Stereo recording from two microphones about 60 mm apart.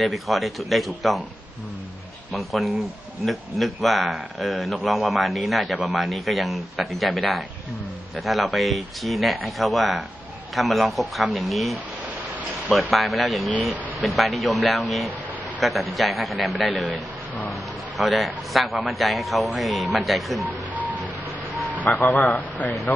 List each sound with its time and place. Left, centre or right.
0.0 s a man's voice: centre
2.3 s a man's voice: centre
20.4 s a sound: right
21.8 s a man's voice: left